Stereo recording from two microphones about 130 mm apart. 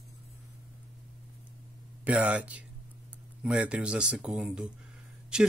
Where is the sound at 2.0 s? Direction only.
10° right (ahead or behind).